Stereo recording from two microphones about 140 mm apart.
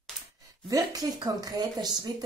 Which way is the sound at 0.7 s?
25° right (ahead or behind).